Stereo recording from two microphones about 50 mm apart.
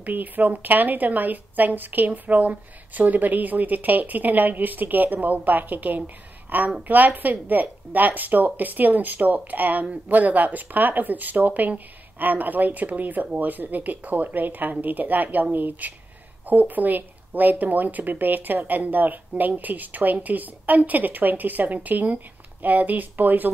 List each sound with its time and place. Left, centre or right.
0.0 s a woman's voice: right